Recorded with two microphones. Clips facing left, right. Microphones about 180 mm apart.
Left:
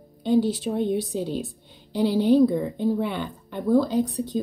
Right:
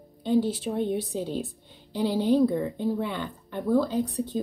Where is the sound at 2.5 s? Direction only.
15° left (ahead or behind).